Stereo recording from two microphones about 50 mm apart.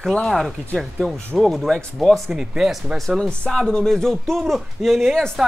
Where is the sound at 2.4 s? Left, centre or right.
Centre.